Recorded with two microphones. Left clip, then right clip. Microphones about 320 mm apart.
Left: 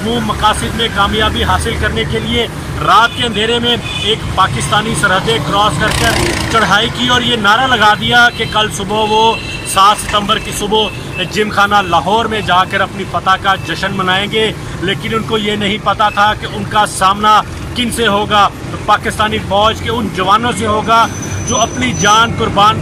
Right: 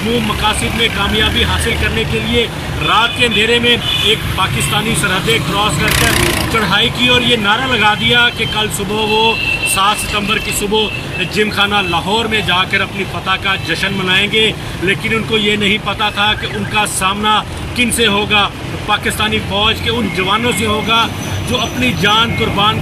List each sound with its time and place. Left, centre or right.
0.4 s speech: centre
2.9 s speech: centre
5.9 s speech: left
6.6 s speech: centre
9.8 s speech: centre
14.2 s speech: left
15.9 s speech: centre